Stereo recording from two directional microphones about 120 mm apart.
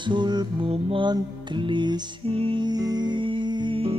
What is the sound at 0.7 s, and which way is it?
Music, 50° right (ahead or behind).